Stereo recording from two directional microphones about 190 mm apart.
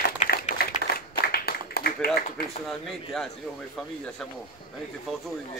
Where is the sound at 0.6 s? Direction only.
50° left (ahead or behind).